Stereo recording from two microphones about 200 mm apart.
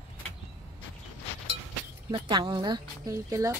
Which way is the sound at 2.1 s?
25° right (ahead or behind).